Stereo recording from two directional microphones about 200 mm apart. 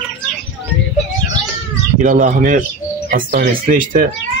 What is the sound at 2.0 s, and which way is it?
Speech, 40° right (ahead or behind).